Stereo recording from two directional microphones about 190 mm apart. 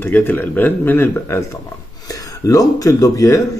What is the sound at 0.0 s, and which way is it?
Speech, 10° left (ahead or behind).